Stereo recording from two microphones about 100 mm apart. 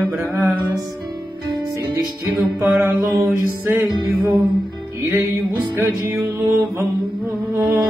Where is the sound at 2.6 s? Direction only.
20° right (ahead or behind).